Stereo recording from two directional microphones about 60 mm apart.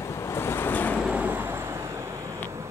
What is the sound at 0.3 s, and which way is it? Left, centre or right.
Vehicle, left.